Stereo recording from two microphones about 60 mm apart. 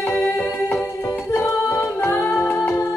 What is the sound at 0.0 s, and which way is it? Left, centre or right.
Music, left.